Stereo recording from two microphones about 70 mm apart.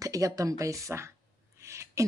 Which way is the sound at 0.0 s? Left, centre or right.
Right.